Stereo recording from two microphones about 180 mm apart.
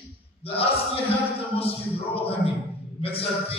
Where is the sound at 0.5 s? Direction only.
30° left (ahead or behind).